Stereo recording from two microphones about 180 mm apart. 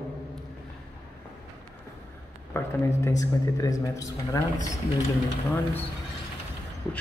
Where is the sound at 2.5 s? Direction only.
15° left (ahead or behind).